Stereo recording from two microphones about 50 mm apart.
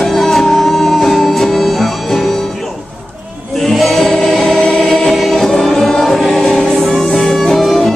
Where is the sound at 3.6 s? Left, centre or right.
Centre.